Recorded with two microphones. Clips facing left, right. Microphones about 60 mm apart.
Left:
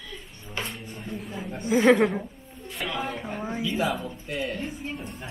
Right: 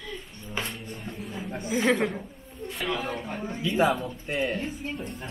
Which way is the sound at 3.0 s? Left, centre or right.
Centre.